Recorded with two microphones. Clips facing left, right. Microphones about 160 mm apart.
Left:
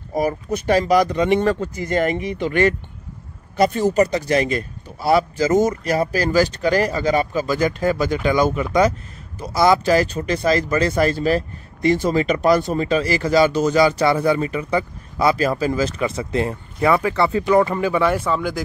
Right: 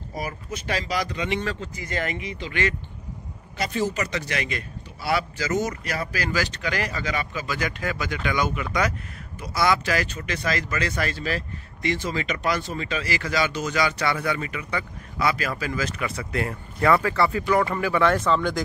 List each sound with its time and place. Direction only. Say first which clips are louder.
0.1 s speech: left 11 dB; 45° left (ahead or behind); by 18.6 s 5° left (ahead or behind)